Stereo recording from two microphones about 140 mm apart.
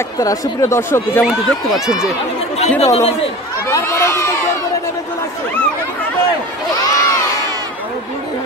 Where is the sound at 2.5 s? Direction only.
50° left (ahead or behind).